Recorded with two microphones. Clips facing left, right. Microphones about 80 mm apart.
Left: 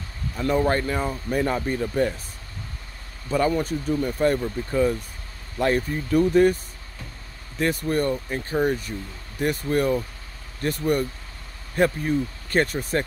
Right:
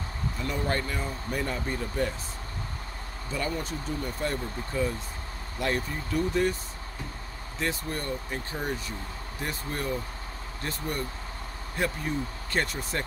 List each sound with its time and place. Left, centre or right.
0.4 s speech: left
3.3 s speech: left
9.4 s speech: left